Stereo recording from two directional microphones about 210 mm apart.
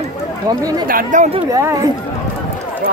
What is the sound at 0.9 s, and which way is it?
Speech, 40° right (ahead or behind).